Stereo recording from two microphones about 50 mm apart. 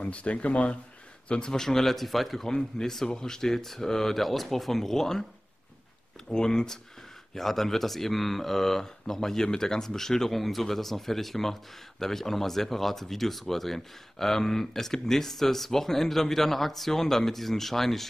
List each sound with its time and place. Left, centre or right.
0.0 s speech: left
1.3 s speech: centre
6.3 s speech: centre